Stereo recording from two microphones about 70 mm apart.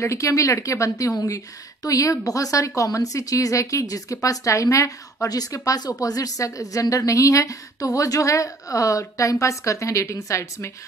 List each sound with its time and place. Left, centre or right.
0.0 s a woman's voice: left